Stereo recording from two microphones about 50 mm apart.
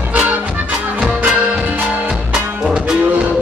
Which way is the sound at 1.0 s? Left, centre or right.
Centre.